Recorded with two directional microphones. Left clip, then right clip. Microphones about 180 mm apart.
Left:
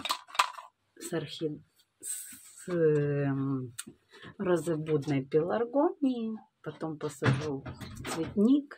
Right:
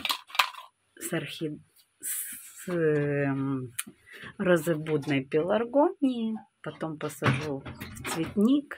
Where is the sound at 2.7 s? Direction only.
15° right (ahead or behind).